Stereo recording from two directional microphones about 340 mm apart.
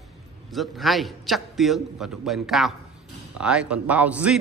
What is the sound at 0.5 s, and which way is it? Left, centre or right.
A man's voice, centre.